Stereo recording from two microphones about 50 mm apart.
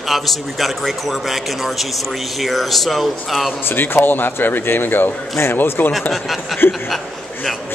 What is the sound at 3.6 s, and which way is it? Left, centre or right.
A man's voice, left.